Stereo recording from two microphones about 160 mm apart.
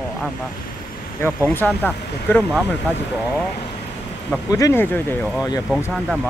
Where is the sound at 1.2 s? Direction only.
15° left (ahead or behind).